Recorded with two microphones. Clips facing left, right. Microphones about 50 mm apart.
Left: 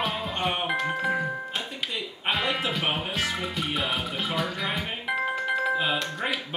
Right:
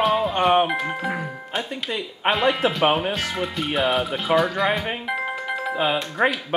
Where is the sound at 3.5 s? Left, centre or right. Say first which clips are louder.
Right 10 dB; centre.